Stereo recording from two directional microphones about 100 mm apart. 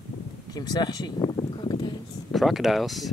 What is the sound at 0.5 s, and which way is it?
Speech, 40° left (ahead or behind).